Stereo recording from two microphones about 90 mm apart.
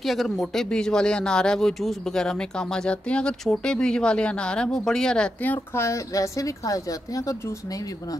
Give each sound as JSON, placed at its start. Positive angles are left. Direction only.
{"t": 0.0, "sound": "speech", "side_deg": 0}
{"t": 5.4, "sound": "a woman's voice", "side_deg": 25}